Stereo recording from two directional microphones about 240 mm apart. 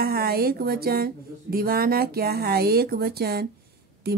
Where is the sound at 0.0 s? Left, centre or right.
Right.